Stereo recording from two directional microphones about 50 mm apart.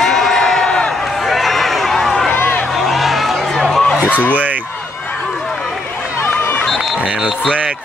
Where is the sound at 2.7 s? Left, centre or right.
Centre.